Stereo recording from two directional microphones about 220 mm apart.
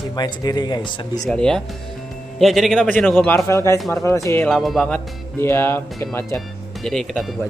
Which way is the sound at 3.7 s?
Centre (ahead or behind).